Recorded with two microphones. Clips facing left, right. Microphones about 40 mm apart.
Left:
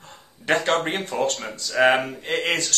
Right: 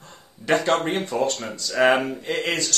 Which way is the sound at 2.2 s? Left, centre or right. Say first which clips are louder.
Left 1 dB; left.